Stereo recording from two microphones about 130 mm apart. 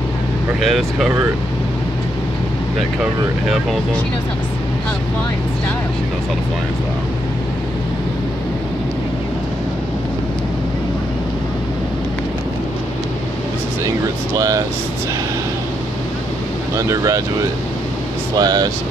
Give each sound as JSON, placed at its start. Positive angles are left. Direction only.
{"t": 0.6, "sound": "speech", "side_deg": 0}
{"t": 16.7, "sound": "speech", "side_deg": -25}
{"t": 18.3, "sound": "speech", "side_deg": -30}